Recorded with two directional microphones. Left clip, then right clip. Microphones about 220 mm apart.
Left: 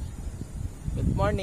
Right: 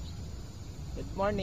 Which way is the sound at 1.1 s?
20° left (ahead or behind).